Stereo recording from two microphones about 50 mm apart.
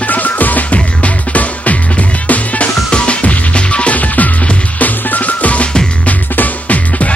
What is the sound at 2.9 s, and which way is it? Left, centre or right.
Music, left.